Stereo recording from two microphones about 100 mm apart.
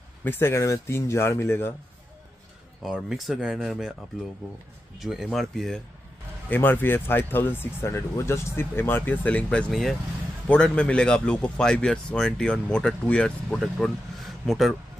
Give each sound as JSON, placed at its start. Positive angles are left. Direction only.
{"t": 0.2, "sound": "speech", "side_deg": 20}
{"t": 2.8, "sound": "speech", "side_deg": 0}
{"t": 4.9, "sound": "speech", "side_deg": 0}
{"t": 6.5, "sound": "speech", "side_deg": 20}
{"t": 9.7, "sound": "speech", "side_deg": 0}
{"t": 10.5, "sound": "a man's voice", "side_deg": 10}